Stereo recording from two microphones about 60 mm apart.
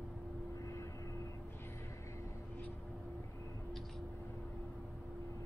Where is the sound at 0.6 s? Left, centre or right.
Left.